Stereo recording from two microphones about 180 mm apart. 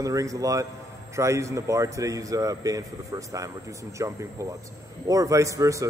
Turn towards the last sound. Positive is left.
turn(degrees=-15)  # may be behind; listen again after turning